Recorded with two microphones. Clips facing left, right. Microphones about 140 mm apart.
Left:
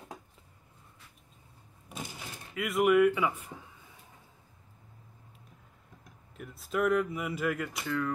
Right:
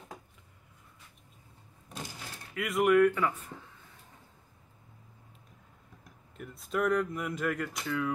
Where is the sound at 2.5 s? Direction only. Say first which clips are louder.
Even; centre (ahead or behind).